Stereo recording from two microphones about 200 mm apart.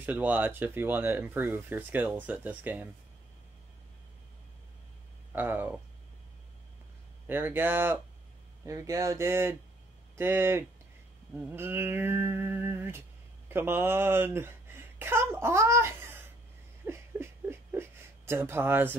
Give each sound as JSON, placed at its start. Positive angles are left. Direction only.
{"t": 0.0, "sound": "speech", "side_deg": -10}
{"t": 5.3, "sound": "speech", "side_deg": -10}
{"t": 7.2, "sound": "speech", "side_deg": -10}
{"t": 16.8, "sound": "whimper", "side_deg": -10}